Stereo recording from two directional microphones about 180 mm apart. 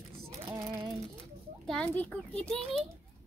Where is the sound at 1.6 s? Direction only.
5° left (ahead or behind).